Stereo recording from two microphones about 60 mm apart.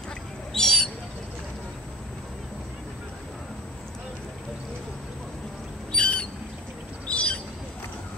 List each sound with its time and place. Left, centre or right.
0.5 s a sound: centre
5.9 s bird: centre
7.1 s squawk: centre